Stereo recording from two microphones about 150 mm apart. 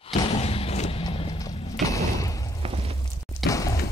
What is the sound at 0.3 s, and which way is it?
Thump, 45° left (ahead or behind).